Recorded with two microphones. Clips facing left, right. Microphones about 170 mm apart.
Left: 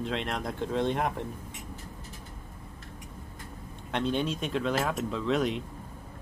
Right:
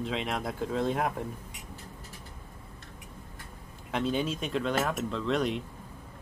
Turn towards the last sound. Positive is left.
turn(degrees=0)  # may be behind; listen again after turning